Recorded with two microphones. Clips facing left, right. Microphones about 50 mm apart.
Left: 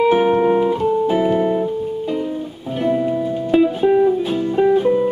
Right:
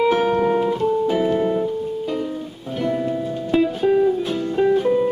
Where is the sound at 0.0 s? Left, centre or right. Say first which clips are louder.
Left 3 dB; centre.